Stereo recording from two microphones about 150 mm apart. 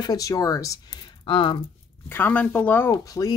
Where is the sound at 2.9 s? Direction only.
25° left (ahead or behind).